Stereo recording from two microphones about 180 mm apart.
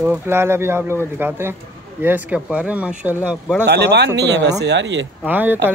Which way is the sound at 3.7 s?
70° right (ahead or behind).